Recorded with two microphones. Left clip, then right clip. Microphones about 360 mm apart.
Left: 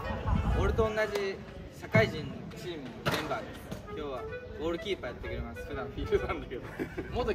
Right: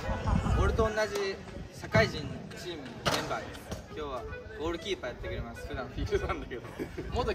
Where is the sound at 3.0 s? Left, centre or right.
Right.